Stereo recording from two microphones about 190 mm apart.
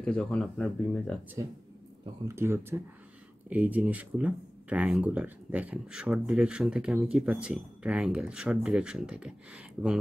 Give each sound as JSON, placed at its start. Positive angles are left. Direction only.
{"t": 0.0, "sound": "speech", "side_deg": 5}
{"t": 1.4, "sound": "speech", "side_deg": -20}